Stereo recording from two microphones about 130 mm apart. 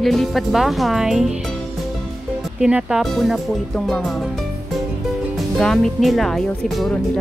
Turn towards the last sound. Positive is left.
turn(degrees=0)  # may be behind; listen again after turning